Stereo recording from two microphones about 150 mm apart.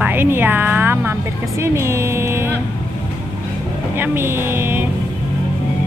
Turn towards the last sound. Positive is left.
turn(degrees=-15)  # may be behind; listen again after turning